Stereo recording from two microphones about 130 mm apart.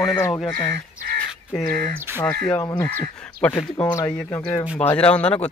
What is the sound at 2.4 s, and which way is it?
Speech, 35° left (ahead or behind).